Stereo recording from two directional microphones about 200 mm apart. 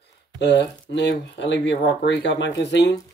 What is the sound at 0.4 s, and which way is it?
Speech, 60° left (ahead or behind).